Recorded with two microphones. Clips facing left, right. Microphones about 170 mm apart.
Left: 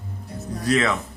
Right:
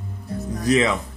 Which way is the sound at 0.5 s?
20° right (ahead or behind).